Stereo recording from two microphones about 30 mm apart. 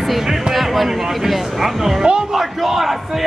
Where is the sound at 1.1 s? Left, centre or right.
Centre.